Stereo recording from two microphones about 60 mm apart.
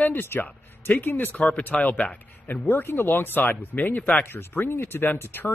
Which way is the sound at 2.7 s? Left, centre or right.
Left.